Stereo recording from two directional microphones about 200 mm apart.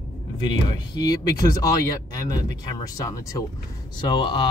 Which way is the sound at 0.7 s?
20° left (ahead or behind).